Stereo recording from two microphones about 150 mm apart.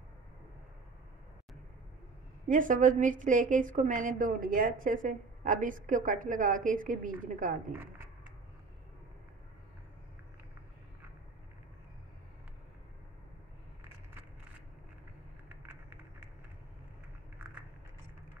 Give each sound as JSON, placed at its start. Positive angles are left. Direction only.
{"t": 2.4, "sound": "a woman's voice", "side_deg": -60}
{"t": 7.7, "sound": "speech", "side_deg": -15}
{"t": 15.4, "sound": "a sound", "side_deg": -10}